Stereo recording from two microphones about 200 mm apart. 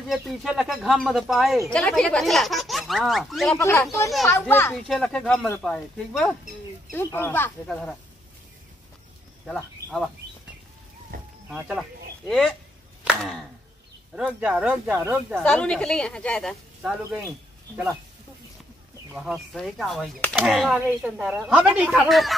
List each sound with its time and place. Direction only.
0.1 s speech: centre (ahead or behind)
3.5 s speech: 10° left (ahead or behind)
9.5 s speech: centre (ahead or behind)
11.1 s a sound: 45° right (ahead or behind)
11.4 s speech: 5° right (ahead or behind)
14.1 s speech: 5° right (ahead or behind)
15.3 s speech: 5° left (ahead or behind)
19.1 s speech: 5° right (ahead or behind)